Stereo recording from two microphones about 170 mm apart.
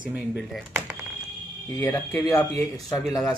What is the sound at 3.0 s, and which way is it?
Speech, centre (ahead or behind).